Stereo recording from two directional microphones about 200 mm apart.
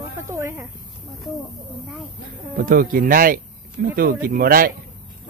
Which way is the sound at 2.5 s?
45° right (ahead or behind).